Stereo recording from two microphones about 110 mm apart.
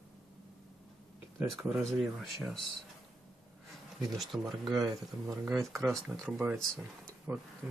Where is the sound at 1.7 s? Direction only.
5° left (ahead or behind).